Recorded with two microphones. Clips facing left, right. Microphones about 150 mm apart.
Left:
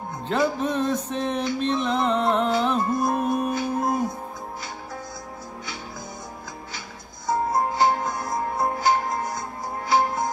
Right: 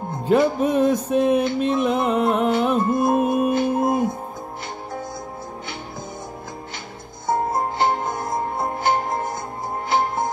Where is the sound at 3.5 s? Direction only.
55° right (ahead or behind).